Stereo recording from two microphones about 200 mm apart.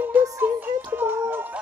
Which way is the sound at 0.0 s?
10° right (ahead or behind).